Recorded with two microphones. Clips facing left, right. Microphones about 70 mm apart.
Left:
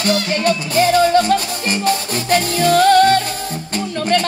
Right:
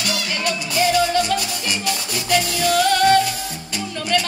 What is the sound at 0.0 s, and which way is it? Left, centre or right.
Music, left.